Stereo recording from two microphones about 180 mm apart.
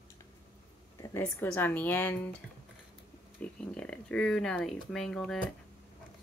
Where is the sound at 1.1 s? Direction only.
15° left (ahead or behind).